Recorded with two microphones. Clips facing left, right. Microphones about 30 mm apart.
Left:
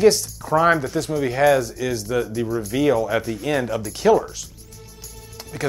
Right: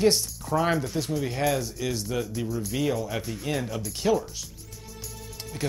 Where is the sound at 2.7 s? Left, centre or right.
Left.